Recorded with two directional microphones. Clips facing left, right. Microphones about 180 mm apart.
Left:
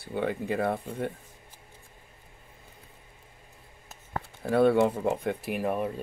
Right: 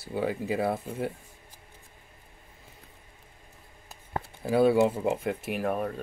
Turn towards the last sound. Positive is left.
turn(degrees=0)  # may be behind; listen again after turning